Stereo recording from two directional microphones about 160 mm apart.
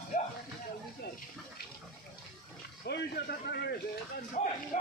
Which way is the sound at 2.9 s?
90° left.